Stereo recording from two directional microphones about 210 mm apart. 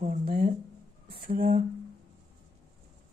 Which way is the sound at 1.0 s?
25° right (ahead or behind).